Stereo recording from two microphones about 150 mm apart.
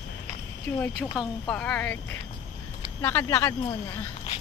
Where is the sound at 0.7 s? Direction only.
15° left (ahead or behind).